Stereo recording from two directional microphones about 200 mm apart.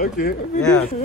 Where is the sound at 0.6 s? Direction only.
5° left (ahead or behind).